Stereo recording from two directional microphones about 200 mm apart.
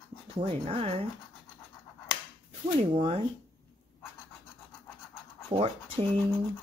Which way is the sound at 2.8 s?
25° right (ahead or behind).